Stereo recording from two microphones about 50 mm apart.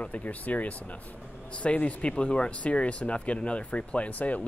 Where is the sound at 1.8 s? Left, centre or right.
Left.